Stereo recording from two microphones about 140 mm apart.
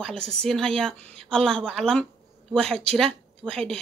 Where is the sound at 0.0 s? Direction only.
5° left (ahead or behind).